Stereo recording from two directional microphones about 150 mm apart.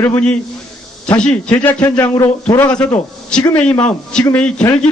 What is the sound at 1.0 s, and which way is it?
A man's voice, 5° left (ahead or behind).